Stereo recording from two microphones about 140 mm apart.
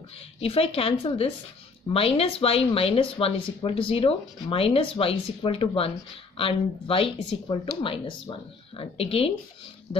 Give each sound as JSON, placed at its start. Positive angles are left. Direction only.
{"t": 0.4, "sound": "a woman's voice", "side_deg": 45}